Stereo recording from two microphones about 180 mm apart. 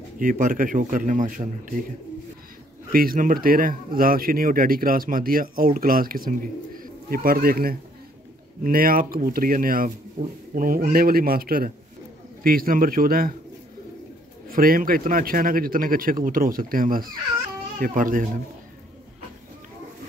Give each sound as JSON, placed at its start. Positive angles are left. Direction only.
{"t": 0.2, "sound": "a man's voice", "side_deg": -50}
{"t": 2.9, "sound": "a man's voice", "side_deg": -55}
{"t": 14.5, "sound": "a man's voice", "side_deg": -50}